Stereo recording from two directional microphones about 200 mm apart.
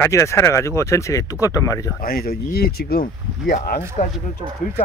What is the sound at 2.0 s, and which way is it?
Speech, 50° left (ahead or behind).